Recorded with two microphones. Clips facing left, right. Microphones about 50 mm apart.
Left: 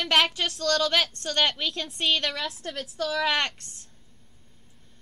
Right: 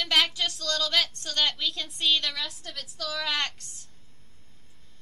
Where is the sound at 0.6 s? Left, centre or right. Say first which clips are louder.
Left 5 dB; left.